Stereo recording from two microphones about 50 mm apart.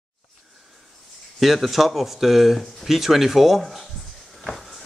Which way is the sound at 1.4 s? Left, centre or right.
Centre.